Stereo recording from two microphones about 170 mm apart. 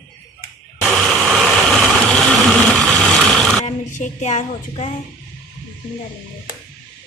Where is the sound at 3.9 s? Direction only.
45° left (ahead or behind).